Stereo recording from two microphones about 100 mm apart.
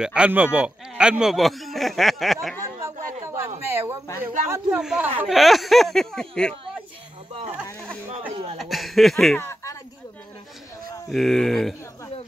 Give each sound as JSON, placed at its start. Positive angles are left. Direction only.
{"t": 0.0, "sound": "speech", "side_deg": -10}
{"t": 2.8, "sound": "a sound", "side_deg": -25}
{"t": 4.2, "sound": "speech", "side_deg": -20}
{"t": 4.7, "sound": "speech", "side_deg": -5}
{"t": 8.5, "sound": "chuckle", "side_deg": 0}
{"t": 9.4, "sound": "a sound", "side_deg": 25}
{"t": 11.1, "sound": "speech", "side_deg": 0}